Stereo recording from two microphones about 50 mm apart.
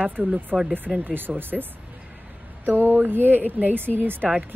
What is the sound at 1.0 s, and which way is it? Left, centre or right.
Speech, right.